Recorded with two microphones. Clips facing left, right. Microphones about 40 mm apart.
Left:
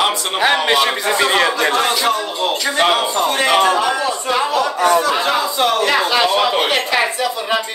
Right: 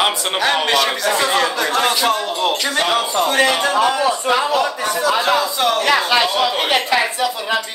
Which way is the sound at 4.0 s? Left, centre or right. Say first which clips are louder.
Right 2 dB; right.